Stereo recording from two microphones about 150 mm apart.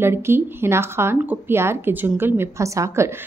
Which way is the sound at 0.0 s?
15° right (ahead or behind).